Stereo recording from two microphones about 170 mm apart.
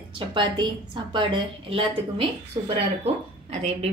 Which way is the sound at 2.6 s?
20° right (ahead or behind).